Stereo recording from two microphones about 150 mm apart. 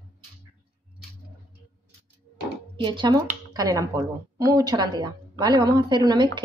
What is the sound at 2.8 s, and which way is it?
A woman's voice, 30° right (ahead or behind).